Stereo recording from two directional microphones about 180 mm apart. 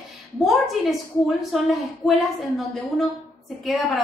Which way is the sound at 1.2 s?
Centre (ahead or behind).